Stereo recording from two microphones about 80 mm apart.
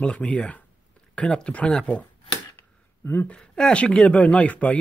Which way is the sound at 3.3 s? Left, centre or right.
Centre.